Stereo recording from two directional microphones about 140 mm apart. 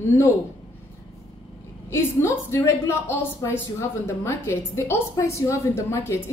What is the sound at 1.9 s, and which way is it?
A woman's voice, 20° left (ahead or behind).